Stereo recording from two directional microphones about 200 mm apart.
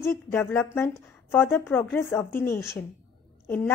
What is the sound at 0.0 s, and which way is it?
Speech, 10° left (ahead or behind).